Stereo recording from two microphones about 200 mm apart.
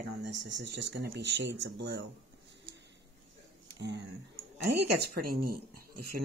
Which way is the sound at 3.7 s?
60° right (ahead or behind).